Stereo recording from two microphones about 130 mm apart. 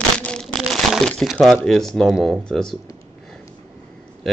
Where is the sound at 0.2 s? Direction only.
5° left (ahead or behind).